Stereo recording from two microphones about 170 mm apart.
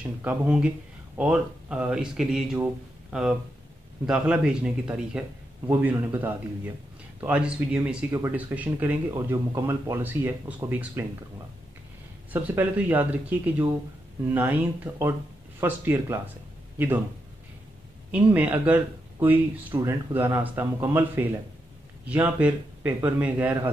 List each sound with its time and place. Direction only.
0.0 s a man's voice: 5° right (ahead or behind)
12.4 s speech: 10° right (ahead or behind)
18.1 s speech: 10° right (ahead or behind)